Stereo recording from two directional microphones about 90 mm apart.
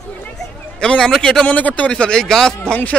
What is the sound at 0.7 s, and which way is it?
A man's voice, 10° left (ahead or behind).